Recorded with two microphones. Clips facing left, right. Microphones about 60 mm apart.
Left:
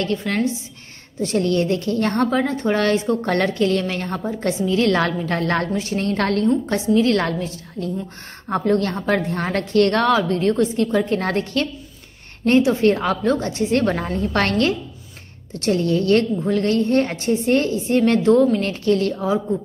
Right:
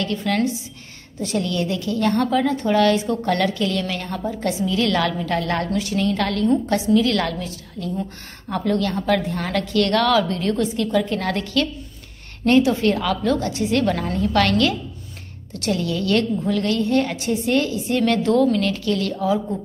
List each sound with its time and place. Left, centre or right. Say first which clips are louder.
0.0 s a woman's voice: even; left
6.7 s a woman's voice: left 1 dB; left